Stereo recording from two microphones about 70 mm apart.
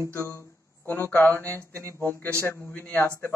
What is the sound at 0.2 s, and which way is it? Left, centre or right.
A man's voice, left.